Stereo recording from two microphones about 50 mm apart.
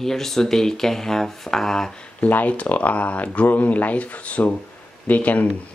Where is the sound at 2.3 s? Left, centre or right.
Left.